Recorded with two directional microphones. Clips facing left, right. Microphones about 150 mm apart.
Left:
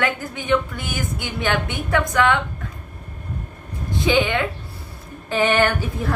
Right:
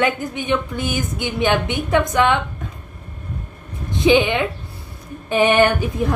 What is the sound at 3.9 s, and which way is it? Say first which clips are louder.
A woman's voice: right 4 dB; 20° right (ahead or behind).